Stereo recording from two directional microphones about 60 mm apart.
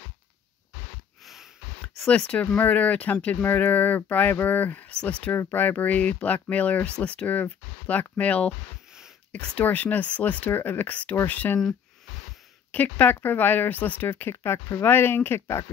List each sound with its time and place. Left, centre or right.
1.2 s sniff: centre
2.0 s speech: centre
2.4 s speech: left
12.7 s speech: left
14.3 s speech: left